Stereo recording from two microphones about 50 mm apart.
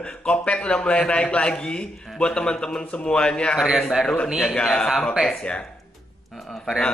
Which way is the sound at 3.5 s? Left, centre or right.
Centre.